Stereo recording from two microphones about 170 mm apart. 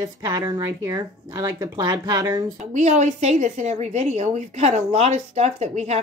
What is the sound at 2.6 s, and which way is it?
A woman's voice, 45° right (ahead or behind).